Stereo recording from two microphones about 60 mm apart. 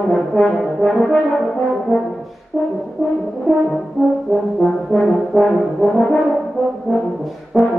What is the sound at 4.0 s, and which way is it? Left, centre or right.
Brass instrument, centre.